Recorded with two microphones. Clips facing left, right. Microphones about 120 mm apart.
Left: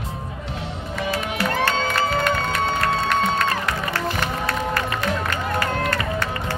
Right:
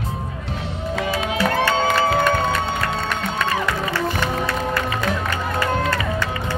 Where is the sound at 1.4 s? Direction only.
80° right.